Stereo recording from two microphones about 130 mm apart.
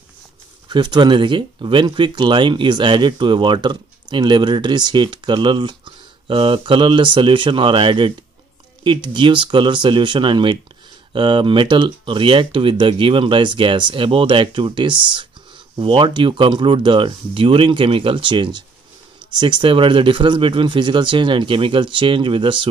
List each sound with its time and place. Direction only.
0.7 s speech: 35° right (ahead or behind)